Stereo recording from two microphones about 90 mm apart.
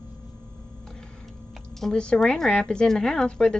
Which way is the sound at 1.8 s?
10° left (ahead or behind).